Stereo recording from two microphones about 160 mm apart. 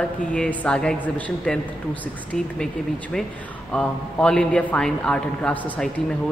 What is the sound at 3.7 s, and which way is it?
A man's voice, 5° left (ahead or behind).